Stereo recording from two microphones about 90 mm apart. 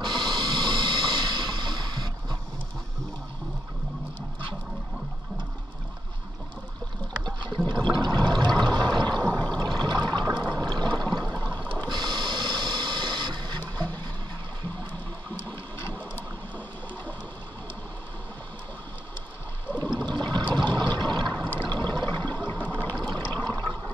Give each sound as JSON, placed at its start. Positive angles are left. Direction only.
{"t": 0.0, "sound": "a sound", "side_deg": -60}
{"t": 7.2, "sound": "water", "side_deg": -55}
{"t": 11.9, "sound": "a sound", "side_deg": -55}
{"t": 13.7, "sound": "vehicle", "side_deg": -60}
{"t": 15.4, "sound": "a sound", "side_deg": 20}
{"t": 19.8, "sound": "toilet flush", "side_deg": -55}
{"t": 20.5, "sound": "a sound", "side_deg": -55}
{"t": 21.3, "sound": "water", "side_deg": 20}
{"t": 21.8, "sound": "toilet flush", "side_deg": -55}
{"t": 22.2, "sound": "toilet flush", "side_deg": 20}
{"t": 22.7, "sound": "water", "side_deg": 20}
{"t": 23.3, "sound": "toilet flush", "side_deg": -50}